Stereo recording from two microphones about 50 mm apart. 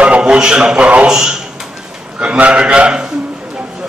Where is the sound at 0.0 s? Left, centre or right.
Right.